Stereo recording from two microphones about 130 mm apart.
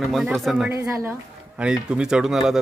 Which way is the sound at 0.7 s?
20° right (ahead or behind).